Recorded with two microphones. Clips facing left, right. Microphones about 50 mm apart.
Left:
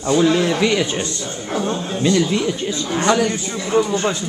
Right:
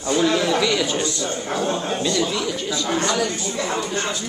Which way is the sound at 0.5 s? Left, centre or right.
Left.